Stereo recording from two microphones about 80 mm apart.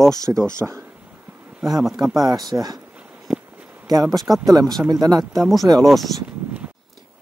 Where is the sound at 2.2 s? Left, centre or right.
Right.